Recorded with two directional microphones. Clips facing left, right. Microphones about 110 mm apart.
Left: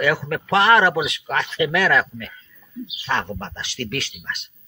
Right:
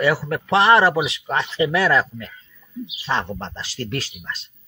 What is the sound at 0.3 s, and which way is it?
Speech, 30° right (ahead or behind).